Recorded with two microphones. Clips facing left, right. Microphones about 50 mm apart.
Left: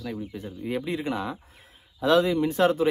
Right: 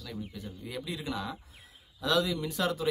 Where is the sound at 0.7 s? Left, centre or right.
Left.